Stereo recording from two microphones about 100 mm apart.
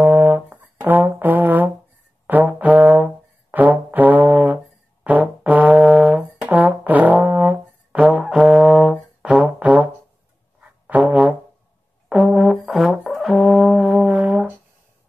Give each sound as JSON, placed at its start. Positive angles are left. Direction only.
{"t": 0.0, "sound": "brass instrument", "side_deg": -20}
{"t": 3.5, "sound": "music", "side_deg": -15}
{"t": 5.0, "sound": "brass instrument", "side_deg": -15}
{"t": 10.6, "sound": "music", "side_deg": -15}
{"t": 12.1, "sound": "brass instrument", "side_deg": 0}